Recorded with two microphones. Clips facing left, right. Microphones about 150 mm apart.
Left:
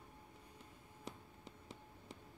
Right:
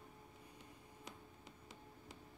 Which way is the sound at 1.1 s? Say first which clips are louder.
Left 6 dB; 30° left (ahead or behind).